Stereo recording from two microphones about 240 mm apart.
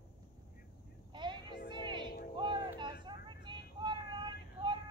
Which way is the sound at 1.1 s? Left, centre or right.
Centre.